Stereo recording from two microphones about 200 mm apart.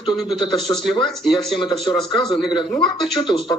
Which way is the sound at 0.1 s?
Centre (ahead or behind).